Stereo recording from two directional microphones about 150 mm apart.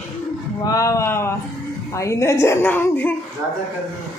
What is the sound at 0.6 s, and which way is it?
A woman's voice, 20° left (ahead or behind).